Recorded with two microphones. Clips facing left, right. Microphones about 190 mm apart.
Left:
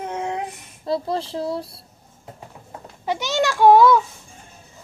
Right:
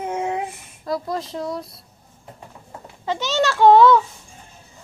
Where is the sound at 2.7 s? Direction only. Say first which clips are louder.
Left 1 dB; 15° left (ahead or behind).